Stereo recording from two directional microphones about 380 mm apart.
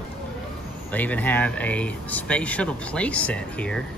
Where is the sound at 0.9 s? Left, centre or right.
Centre.